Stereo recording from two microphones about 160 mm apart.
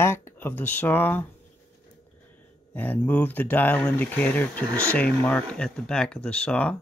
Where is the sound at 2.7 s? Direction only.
10° left (ahead or behind).